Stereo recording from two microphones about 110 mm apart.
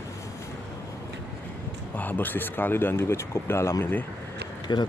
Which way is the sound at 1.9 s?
15° left (ahead or behind).